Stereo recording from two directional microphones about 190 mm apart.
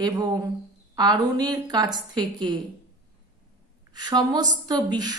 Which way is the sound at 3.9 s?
20° right (ahead or behind).